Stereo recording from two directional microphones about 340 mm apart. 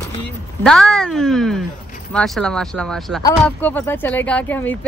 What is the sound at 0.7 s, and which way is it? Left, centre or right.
Speech, centre.